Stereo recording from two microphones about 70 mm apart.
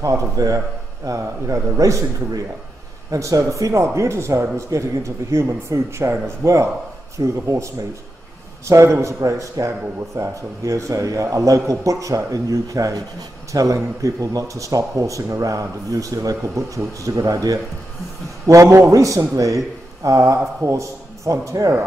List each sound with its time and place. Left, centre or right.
0.0 s speech: right
18.5 s speech: right